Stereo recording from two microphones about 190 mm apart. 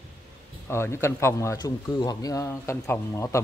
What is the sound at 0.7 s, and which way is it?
Speech, 15° left (ahead or behind).